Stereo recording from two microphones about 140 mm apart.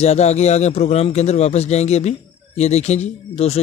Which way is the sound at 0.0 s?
50° left (ahead or behind).